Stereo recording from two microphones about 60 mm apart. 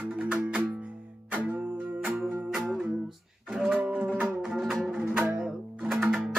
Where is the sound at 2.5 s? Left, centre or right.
Centre.